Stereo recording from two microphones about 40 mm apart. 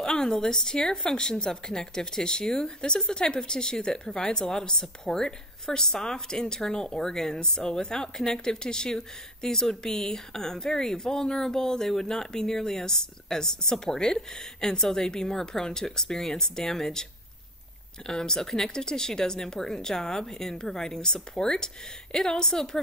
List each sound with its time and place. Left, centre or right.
0.0 s speech: centre